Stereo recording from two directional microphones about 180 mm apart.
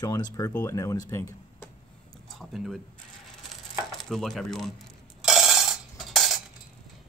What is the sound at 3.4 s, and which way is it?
Crumpling, centre (ahead or behind).